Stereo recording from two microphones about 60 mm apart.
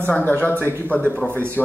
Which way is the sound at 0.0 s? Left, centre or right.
Left.